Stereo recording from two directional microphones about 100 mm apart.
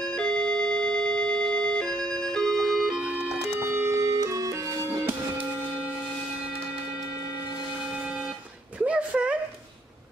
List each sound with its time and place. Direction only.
0.2 s music: 10° left (ahead or behind)
3.5 s organ: 25° right (ahead or behind)
8.7 s a sound: 10° right (ahead or behind)